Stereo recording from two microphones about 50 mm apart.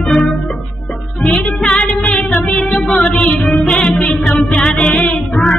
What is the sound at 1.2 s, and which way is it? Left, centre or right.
Music, centre.